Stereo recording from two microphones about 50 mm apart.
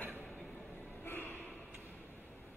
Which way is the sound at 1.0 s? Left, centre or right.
Left.